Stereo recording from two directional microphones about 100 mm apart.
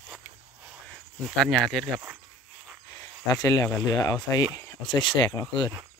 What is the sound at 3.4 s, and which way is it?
Speech, 35° left (ahead or behind).